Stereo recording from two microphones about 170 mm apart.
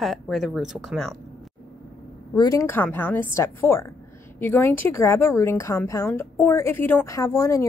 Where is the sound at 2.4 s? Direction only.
20° left (ahead or behind).